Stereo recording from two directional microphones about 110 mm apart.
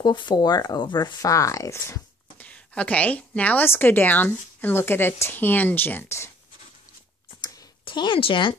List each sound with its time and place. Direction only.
0.0 s speech: 45° left (ahead or behind); by 2.0 s 25° left (ahead or behind)
2.3 s a woman's voice: 10° left (ahead or behind)
7.8 s speech: 45° left (ahead or behind)